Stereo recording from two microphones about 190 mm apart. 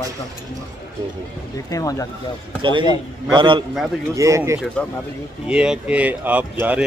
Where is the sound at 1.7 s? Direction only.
20° left (ahead or behind).